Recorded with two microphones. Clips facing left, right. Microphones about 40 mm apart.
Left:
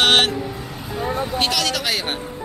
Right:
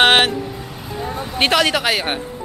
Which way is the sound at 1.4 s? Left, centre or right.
Right.